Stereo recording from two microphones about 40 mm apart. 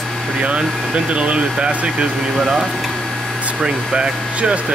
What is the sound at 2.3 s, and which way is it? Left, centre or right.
Speech, centre.